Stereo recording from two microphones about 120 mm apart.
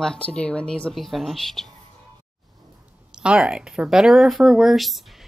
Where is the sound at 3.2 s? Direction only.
10° right (ahead or behind).